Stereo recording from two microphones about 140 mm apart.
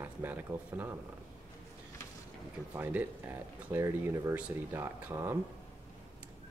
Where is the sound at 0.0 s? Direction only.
15° right (ahead or behind).